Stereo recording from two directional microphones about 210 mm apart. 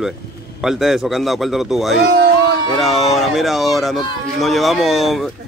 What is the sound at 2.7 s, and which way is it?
A man's voice, centre (ahead or behind).